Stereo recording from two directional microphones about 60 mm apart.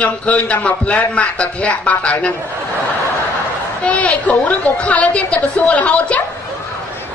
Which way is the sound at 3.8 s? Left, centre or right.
Left.